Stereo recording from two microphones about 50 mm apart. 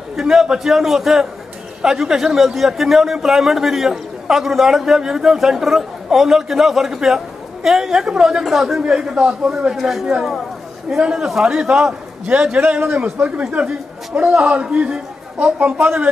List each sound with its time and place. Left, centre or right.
0.1 s a man's voice: centre
12.5 s speech: right